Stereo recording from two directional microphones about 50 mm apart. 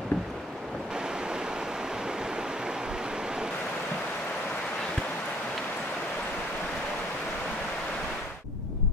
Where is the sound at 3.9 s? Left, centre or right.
Left.